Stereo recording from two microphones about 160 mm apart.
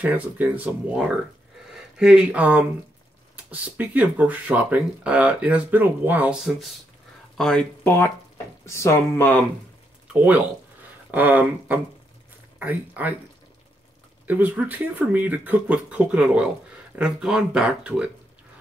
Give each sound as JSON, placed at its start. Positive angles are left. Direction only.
{"t": 0.0, "sound": "speech", "side_deg": -10}
{"t": 8.6, "sound": "speech", "side_deg": 20}
{"t": 10.1, "sound": "speech", "side_deg": -10}
{"t": 14.2, "sound": "speech", "side_deg": -10}